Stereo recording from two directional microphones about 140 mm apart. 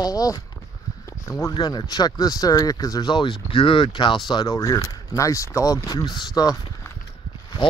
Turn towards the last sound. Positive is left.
turn(degrees=35)  # may be behind; listen again after turning